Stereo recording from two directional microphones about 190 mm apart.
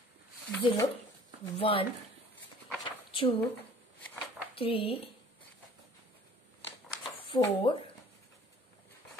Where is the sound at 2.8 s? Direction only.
25° left (ahead or behind).